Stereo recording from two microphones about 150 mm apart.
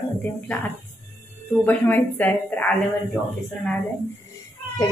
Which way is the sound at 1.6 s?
15° left (ahead or behind).